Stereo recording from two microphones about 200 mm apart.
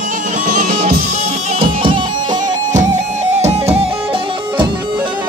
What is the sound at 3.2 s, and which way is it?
Music, 35° right (ahead or behind).